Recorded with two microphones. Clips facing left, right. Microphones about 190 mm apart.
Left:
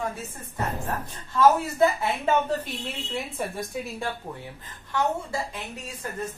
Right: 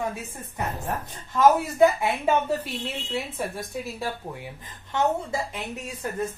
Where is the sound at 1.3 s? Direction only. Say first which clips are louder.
Right 1 dB; 15° right (ahead or behind); by 4.0 s centre (ahead or behind).